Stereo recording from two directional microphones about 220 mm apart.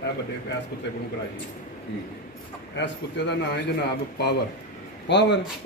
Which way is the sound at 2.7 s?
50° left (ahead or behind).